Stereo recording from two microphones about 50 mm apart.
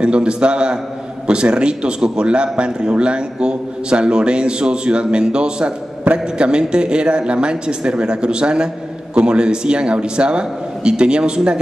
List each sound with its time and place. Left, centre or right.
0.0 s a man's voice: centre